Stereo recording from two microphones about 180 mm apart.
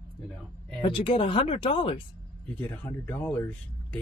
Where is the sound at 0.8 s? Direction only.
30° left (ahead or behind).